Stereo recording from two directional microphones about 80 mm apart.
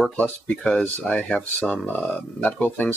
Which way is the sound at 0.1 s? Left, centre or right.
Centre.